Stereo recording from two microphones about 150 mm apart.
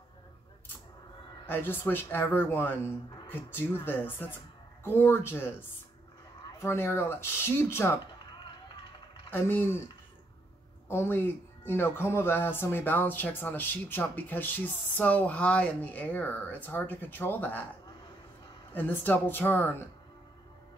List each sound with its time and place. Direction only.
1.4 s speech: 15° left (ahead or behind)
8.4 s a sound: 30° left (ahead or behind)
9.3 s speech: 15° left (ahead or behind)
10.9 s speech: 15° left (ahead or behind)
18.7 s speech: 10° left (ahead or behind)